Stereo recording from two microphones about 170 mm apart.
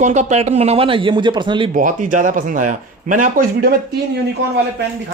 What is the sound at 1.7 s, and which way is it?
Speech, 50° right (ahead or behind).